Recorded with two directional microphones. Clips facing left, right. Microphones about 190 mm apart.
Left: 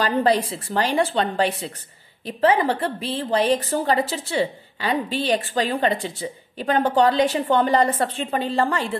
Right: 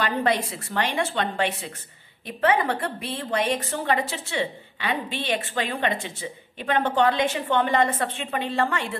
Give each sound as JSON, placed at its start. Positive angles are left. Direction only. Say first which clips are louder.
{"t": 0.0, "sound": "a woman's voice", "louder": "left 4 dB", "side_deg": 35}